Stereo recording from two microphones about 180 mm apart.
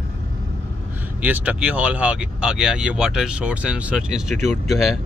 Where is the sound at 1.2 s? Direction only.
10° right (ahead or behind).